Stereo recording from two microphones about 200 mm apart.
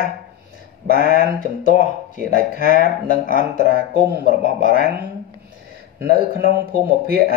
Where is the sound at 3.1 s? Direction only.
40° left (ahead or behind).